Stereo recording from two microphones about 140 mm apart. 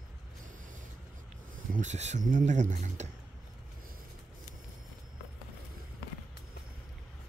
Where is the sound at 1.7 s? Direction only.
60° right (ahead or behind).